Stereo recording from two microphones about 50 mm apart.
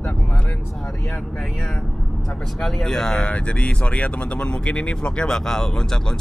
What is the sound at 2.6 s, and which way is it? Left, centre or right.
Speech, centre.